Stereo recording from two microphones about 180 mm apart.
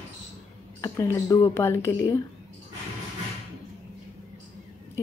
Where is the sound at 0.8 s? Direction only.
20° left (ahead or behind).